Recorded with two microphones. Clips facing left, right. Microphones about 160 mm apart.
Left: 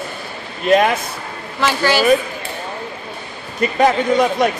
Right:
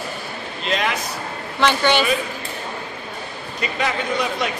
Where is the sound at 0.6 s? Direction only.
50° left (ahead or behind).